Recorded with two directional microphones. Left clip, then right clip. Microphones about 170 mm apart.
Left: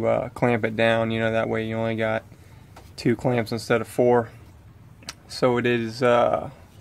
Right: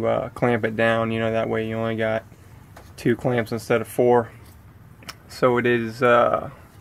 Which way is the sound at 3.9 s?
10° left (ahead or behind).